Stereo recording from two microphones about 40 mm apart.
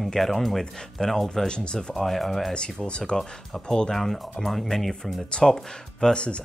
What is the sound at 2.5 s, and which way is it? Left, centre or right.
Speech, left.